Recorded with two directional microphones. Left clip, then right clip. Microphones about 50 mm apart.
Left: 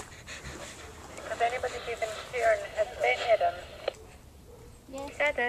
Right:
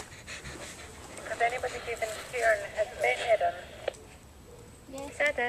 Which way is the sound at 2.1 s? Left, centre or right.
Left.